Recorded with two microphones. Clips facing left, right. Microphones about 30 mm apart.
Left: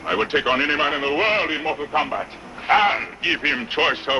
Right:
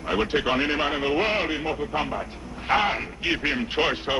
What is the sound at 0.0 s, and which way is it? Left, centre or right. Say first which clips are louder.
Speech: left 3 dB; left.